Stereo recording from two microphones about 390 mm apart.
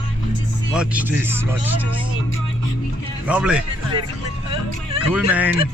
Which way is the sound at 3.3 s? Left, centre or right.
Centre.